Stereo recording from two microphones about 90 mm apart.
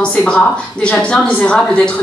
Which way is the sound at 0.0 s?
10° left (ahead or behind).